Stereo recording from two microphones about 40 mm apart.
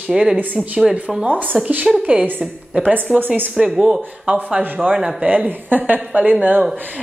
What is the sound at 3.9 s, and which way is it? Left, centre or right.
Speech, right.